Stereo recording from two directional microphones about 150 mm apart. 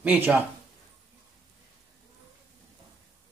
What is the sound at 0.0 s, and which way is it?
Speech, 10° right (ahead or behind).